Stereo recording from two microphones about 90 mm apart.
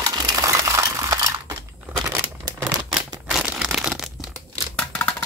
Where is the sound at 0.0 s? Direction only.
40° right (ahead or behind).